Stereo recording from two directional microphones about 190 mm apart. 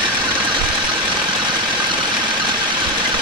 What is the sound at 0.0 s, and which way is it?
Engine, 25° right (ahead or behind).